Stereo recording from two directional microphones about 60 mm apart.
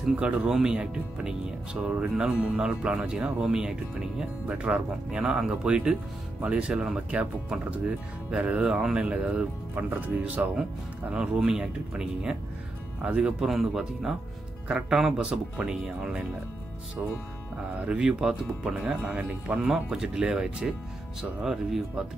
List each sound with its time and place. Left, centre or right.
0.1 s speech: centre
11.1 s speech: centre
13.5 s speech: centre
17.7 s speech: centre